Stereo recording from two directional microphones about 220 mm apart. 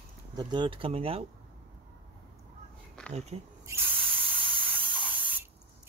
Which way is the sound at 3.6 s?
5° right (ahead or behind).